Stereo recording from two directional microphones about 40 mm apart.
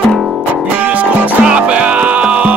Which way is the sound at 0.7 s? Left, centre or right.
Right.